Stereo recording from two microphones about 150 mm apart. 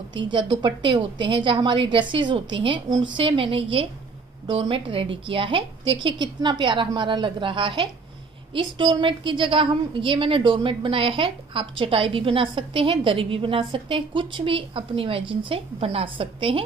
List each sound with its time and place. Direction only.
0.3 s a woman's voice: 30° right (ahead or behind)